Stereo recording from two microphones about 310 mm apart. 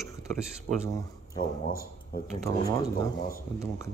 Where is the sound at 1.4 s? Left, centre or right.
Left.